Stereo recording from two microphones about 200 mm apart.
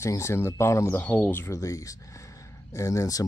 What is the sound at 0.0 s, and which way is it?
Speech, 15° left (ahead or behind).